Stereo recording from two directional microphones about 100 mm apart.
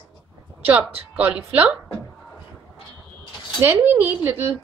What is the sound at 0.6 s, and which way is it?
Speech, 15° right (ahead or behind).